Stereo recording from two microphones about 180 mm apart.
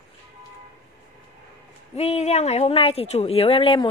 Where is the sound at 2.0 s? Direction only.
35° left (ahead or behind).